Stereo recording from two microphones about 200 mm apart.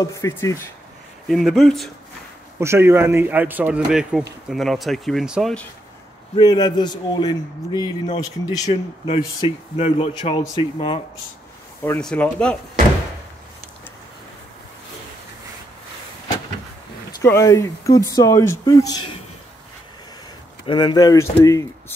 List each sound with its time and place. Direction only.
0.0 s speech: 15° left (ahead or behind)
1.3 s speech: centre (ahead or behind)
2.6 s a man's voice: 15° right (ahead or behind)
6.3 s a man's voice: 20° left (ahead or behind)
11.8 s speech: 5° left (ahead or behind)
17.2 s speech: 15° left (ahead or behind)
20.6 s speech: 20° left (ahead or behind)